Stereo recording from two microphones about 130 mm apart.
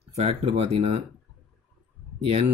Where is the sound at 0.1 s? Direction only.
55° right (ahead or behind).